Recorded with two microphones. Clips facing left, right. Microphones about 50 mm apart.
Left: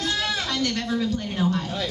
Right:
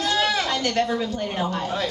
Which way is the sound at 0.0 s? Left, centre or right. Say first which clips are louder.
Right 4 dB; right.